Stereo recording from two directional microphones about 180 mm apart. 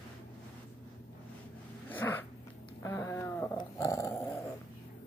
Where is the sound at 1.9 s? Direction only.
10° left (ahead or behind).